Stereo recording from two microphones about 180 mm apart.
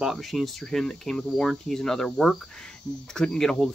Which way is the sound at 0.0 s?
Centre (ahead or behind).